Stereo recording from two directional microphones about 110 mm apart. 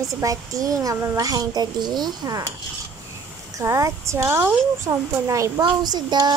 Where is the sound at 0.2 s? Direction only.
30° right (ahead or behind).